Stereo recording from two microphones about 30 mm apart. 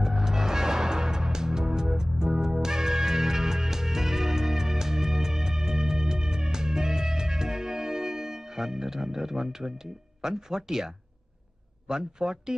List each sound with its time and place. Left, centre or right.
0.0 s music: centre
11.9 s a man's voice: right